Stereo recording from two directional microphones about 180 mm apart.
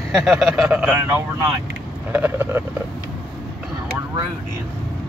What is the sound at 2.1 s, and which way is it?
Speech, 10° right (ahead or behind).